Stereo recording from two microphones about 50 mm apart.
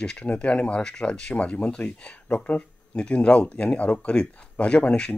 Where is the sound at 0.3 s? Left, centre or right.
Left.